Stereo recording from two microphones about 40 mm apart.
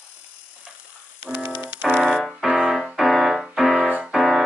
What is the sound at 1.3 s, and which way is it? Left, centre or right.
Music, right.